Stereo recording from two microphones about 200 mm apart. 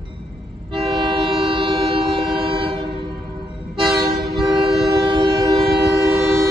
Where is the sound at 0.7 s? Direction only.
25° right (ahead or behind).